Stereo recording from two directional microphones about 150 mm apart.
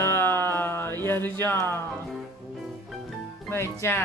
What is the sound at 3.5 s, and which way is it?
Music, 15° left (ahead or behind).